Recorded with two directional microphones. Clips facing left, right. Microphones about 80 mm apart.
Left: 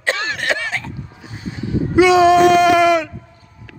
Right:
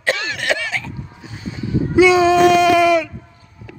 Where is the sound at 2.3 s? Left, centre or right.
Left.